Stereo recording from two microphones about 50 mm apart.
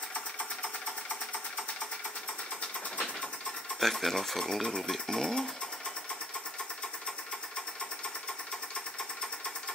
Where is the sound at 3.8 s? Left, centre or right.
Centre.